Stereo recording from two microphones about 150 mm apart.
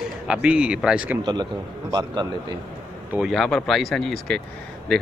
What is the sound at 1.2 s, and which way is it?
A man's voice, 30° right (ahead or behind).